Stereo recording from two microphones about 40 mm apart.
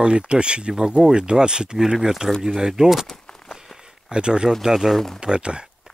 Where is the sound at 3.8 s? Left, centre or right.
Centre.